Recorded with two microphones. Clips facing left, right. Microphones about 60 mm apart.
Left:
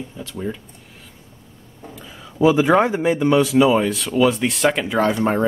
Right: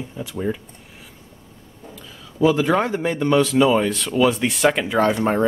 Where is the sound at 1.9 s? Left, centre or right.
Left.